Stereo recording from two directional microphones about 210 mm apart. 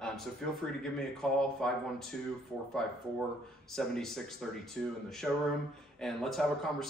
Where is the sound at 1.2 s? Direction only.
5° left (ahead or behind).